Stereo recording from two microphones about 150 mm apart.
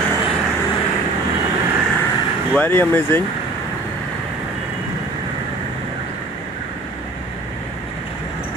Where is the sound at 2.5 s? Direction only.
15° left (ahead or behind).